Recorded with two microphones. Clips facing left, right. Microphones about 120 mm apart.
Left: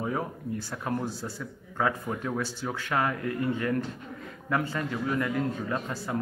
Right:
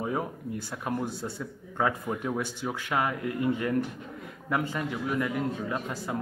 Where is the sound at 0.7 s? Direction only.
20° right (ahead or behind).